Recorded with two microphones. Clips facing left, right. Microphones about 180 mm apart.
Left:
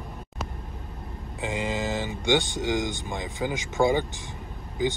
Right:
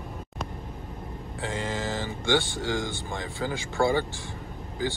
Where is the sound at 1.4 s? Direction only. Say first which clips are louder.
Left 2 dB; 15° left (ahead or behind).